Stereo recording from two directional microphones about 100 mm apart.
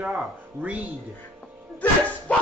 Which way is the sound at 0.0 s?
10° right (ahead or behind).